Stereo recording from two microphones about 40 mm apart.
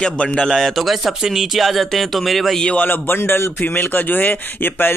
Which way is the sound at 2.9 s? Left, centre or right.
Left.